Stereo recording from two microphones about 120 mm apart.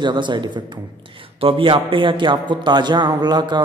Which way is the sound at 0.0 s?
40° right (ahead or behind).